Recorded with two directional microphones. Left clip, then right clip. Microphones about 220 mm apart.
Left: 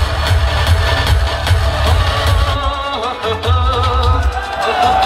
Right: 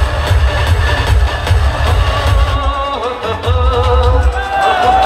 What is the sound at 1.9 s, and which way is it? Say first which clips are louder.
Music: right 1 dB; 50° left (ahead or behind).